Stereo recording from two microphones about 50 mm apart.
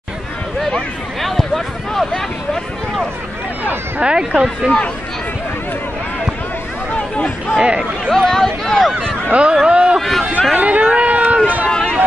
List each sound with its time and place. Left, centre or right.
1.2 s a sound: centre
4.0 s speech: centre
6.9 s hubbub: left
7.6 s speech: right
8.1 s a sound: centre
9.3 s speech: centre
9.9 s run: centre
10.5 s run: right
11.7 s run: centre